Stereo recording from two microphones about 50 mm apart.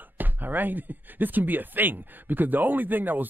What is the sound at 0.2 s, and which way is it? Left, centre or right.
Speech, right.